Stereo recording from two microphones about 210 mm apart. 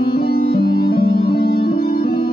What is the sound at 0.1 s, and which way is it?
Music, 45° left (ahead or behind).